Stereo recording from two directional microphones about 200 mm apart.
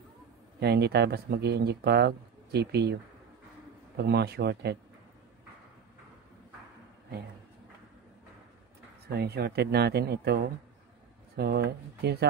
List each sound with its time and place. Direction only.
0.6 s speech: 55° right (ahead or behind)
9.1 s speech: 55° right (ahead or behind)